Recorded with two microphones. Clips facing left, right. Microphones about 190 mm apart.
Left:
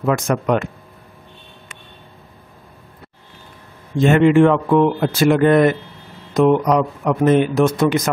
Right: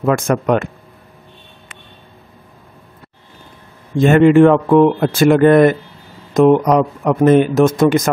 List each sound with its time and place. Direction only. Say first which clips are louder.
0.0 s speech: right 3 dB; 50° right (ahead or behind)
4.0 s speech: right 3 dB; 50° right (ahead or behind)